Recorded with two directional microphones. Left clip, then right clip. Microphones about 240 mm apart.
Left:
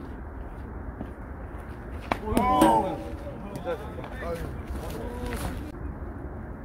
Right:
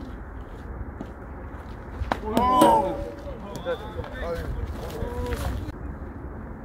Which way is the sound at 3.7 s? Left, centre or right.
Centre.